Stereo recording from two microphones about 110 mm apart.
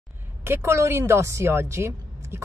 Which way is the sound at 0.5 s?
25° right (ahead or behind).